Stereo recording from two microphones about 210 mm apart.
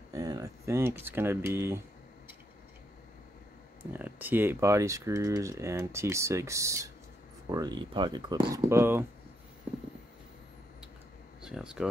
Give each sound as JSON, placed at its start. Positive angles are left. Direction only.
{"t": 0.1, "sound": "speech", "side_deg": -15}
{"t": 3.9, "sound": "speech", "side_deg": -10}
{"t": 11.4, "sound": "speech", "side_deg": -5}